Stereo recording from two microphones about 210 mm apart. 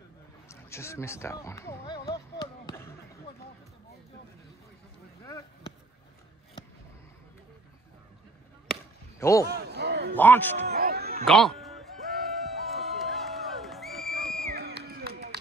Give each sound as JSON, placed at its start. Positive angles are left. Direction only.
{"t": 0.5, "sound": "speech", "side_deg": 10}
{"t": 9.2, "sound": "a man's voice", "side_deg": 15}
{"t": 9.5, "sound": "a sound", "side_deg": -50}
{"t": 10.1, "sound": "a man's voice", "side_deg": 10}
{"t": 10.7, "sound": "music", "side_deg": -45}
{"t": 11.2, "sound": "music", "side_deg": 0}
{"t": 14.5, "sound": "a sound", "side_deg": -50}